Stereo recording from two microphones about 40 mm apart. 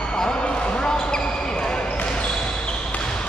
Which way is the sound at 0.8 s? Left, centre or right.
Centre.